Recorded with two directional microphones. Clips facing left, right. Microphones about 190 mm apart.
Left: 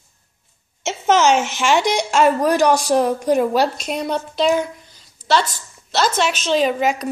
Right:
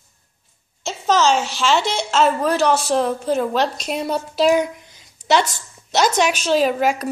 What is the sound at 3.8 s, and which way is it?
Speech, 5° right (ahead or behind).